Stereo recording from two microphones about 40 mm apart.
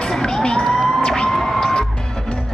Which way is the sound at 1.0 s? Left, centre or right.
Centre.